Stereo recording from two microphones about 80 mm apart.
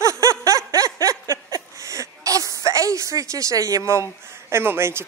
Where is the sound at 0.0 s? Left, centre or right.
Right.